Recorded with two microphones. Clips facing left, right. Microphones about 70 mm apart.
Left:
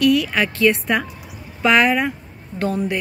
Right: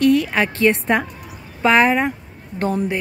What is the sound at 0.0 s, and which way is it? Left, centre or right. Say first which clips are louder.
Speech: right 1 dB; right.